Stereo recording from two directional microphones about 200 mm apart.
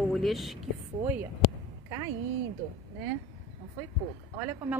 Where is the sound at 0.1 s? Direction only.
Centre (ahead or behind).